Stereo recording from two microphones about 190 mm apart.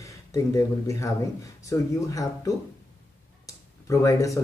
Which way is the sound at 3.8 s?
15° left (ahead or behind).